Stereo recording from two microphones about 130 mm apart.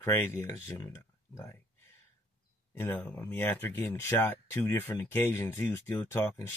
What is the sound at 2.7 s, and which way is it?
Speech, 15° left (ahead or behind).